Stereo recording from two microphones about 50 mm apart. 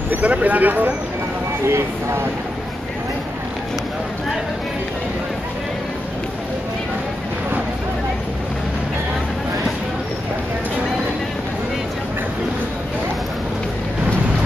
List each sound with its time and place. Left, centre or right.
0.1 s speech: right
1.7 s speech: right